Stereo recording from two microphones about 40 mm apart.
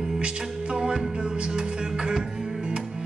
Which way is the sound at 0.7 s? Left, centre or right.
Centre.